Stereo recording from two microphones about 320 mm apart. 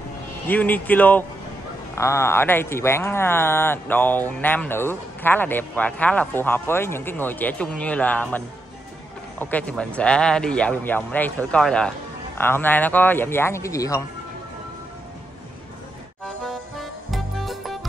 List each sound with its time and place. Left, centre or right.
0.5 s a man's voice: centre
16.7 s music: centre